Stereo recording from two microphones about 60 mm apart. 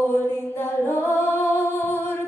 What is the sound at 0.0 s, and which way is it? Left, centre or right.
Mantra, left.